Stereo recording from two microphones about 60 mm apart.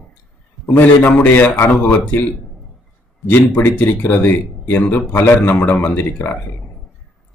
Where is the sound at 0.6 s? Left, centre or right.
Left.